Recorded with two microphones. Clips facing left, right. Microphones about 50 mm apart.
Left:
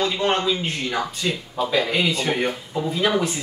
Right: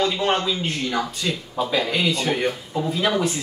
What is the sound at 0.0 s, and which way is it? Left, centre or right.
Speech, centre.